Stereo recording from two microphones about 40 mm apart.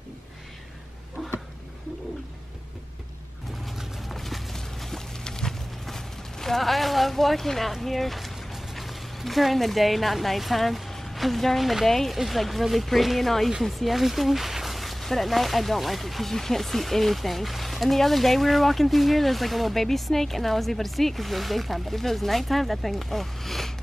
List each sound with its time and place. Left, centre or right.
3.7 s clip-clop: centre
4.6 s a sound: centre
7.7 s speech: centre